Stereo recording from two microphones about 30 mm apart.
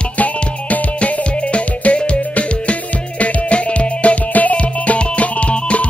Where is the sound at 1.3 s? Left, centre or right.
Left.